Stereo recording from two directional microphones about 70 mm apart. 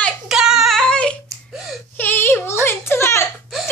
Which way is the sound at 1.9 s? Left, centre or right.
Left.